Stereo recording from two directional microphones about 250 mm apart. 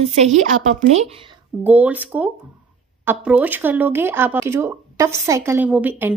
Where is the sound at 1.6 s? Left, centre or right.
Centre.